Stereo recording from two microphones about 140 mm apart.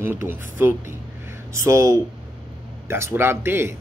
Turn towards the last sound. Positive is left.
turn(degrees=-15)  # may be behind; listen again after turning